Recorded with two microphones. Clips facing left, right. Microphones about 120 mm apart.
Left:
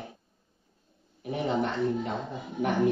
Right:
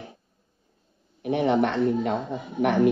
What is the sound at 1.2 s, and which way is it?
Speech, 75° right (ahead or behind).